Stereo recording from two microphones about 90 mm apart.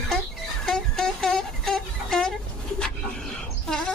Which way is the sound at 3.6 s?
5° left (ahead or behind).